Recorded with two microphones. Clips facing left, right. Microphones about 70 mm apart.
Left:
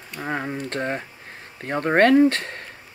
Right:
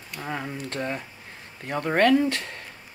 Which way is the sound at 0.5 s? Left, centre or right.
Left.